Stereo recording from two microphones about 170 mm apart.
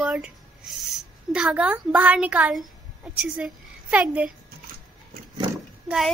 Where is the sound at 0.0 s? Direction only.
5° right (ahead or behind).